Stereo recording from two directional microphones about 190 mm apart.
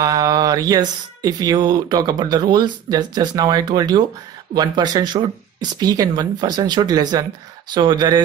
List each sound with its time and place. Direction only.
0.0 s speech: 20° right (ahead or behind)